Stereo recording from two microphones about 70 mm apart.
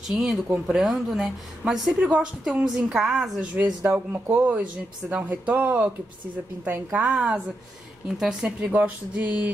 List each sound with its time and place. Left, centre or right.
0.1 s a woman's voice: centre
3.3 s a woman's voice: centre
8.7 s a woman's voice: right